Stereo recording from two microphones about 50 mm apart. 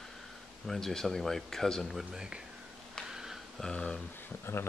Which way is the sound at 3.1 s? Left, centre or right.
Centre.